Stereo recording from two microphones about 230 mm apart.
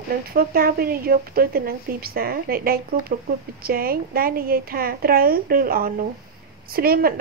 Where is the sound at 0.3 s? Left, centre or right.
Right.